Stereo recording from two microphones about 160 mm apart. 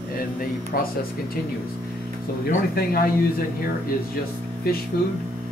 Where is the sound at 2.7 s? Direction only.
65° left (ahead or behind).